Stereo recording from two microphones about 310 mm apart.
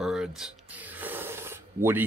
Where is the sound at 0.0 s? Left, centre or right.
Centre.